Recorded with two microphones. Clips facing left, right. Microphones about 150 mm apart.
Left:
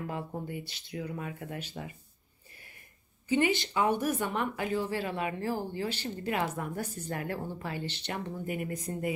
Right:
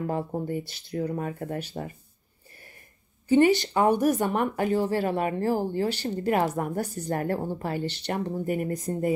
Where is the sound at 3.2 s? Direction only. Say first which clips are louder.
Right 8 dB; 40° right (ahead or behind).